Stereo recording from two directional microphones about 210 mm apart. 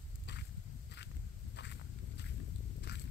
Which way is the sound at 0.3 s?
55° left (ahead or behind).